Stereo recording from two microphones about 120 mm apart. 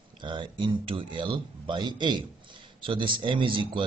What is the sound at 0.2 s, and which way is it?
Speech, 40° right (ahead or behind).